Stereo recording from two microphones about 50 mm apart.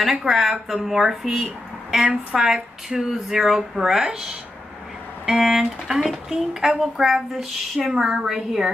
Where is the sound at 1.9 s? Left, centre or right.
Centre.